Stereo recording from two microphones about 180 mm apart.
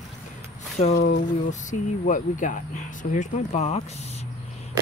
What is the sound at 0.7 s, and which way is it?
Speech, 40° left (ahead or behind).